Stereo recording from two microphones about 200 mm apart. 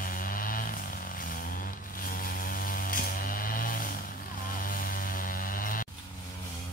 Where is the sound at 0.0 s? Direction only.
45° left (ahead or behind).